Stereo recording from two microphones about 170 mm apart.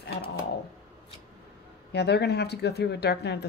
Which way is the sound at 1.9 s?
75° left (ahead or behind).